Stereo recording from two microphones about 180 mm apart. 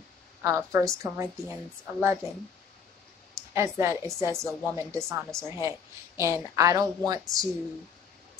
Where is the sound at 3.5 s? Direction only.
15° right (ahead or behind).